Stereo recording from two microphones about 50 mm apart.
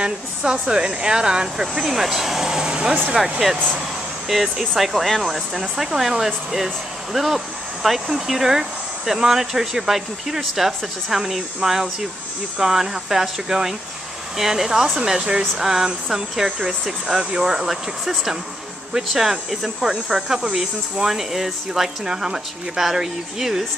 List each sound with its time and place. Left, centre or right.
0.0 s speech: centre
4.3 s speech: centre